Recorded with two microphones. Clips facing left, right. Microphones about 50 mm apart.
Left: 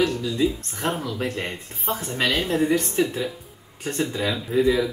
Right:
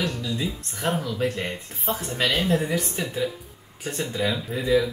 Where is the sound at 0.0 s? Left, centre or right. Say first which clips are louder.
Left 6 dB; centre.